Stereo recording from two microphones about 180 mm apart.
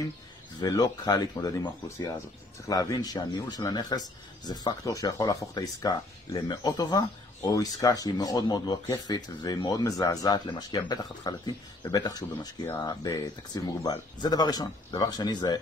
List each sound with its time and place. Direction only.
0.6 s speech: 20° left (ahead or behind)